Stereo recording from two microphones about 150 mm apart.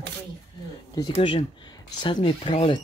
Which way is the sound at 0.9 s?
30° left (ahead or behind).